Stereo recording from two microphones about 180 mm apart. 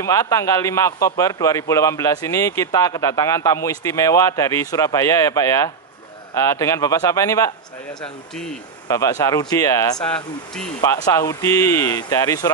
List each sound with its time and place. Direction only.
0.0 s a man's voice: 20° left (ahead or behind)
8.8 s speech: 20° left (ahead or behind)